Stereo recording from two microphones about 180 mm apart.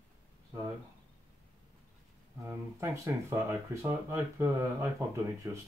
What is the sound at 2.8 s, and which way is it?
Speech, 15° right (ahead or behind).